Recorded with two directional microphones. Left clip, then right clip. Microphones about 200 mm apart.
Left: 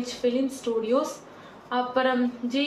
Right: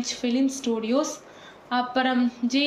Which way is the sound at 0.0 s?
45° right (ahead or behind).